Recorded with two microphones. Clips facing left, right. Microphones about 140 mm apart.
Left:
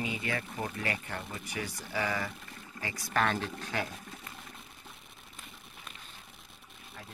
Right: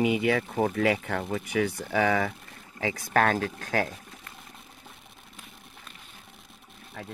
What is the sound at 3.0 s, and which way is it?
Speech, 50° right (ahead or behind).